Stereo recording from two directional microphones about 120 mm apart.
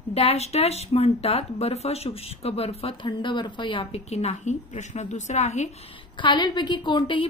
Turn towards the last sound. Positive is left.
turn(degrees=40)  # may be behind; listen again after turning